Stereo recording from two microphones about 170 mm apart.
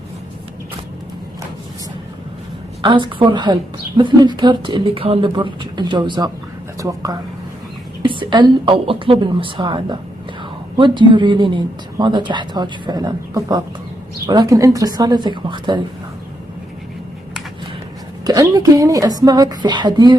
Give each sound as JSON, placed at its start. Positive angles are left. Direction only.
{"t": 2.8, "sound": "a woman's voice", "side_deg": -30}
{"t": 18.2, "sound": "a woman's voice", "side_deg": -25}